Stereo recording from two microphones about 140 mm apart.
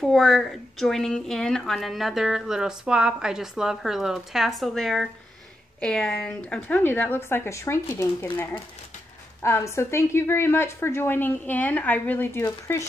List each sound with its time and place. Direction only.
0.0 s a woman's voice: centre (ahead or behind); by 12.8 s 20° left (ahead or behind)